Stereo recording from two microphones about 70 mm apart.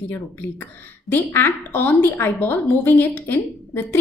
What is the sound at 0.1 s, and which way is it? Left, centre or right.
A woman's voice, left.